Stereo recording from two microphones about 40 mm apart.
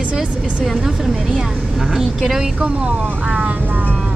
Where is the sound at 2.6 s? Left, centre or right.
Right.